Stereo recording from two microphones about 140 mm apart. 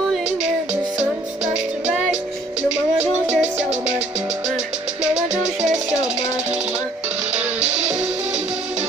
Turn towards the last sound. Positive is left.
turn(degrees=-10)  # may be behind; listen again after turning